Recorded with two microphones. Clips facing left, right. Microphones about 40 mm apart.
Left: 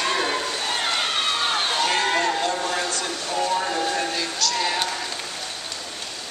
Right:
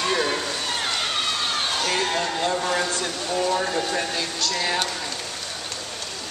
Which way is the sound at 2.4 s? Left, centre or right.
Centre.